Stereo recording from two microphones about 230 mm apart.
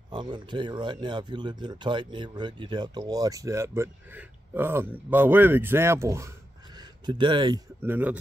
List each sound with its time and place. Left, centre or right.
0.1 s speech: centre